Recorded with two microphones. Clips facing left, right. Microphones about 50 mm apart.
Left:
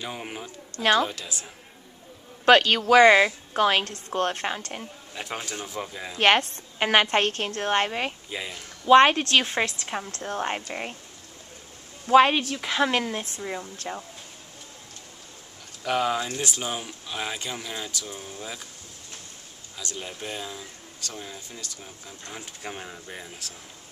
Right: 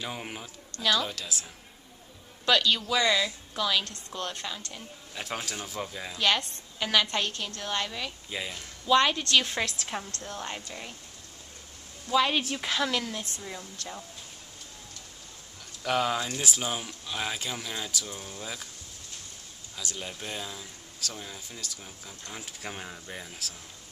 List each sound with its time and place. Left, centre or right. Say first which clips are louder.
0.0 s speech: left 2 dB; centre
2.4 s a woman's voice: left 7 dB; left
5.1 s speech: left 1 dB; centre
6.1 s a woman's voice: left 7 dB; left
8.3 s speech: left 1 dB; centre
8.8 s a woman's voice: left 8 dB; left; by 10.2 s centre
10.2 s a woman's voice: left 8 dB; left
12.1 s a woman's voice: left 8 dB; left
12.7 s a woman's voice: left 6 dB; left
15.8 s speech: left 2 dB; centre
20.0 s speech: left 3 dB; centre